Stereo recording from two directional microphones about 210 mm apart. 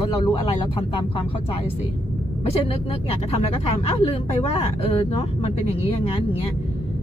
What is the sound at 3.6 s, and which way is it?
Speech, 30° left (ahead or behind).